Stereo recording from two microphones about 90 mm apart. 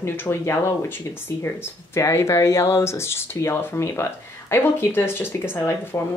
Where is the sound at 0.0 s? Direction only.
25° left (ahead or behind).